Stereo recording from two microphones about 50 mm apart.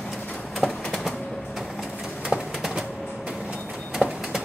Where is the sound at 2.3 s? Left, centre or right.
Centre.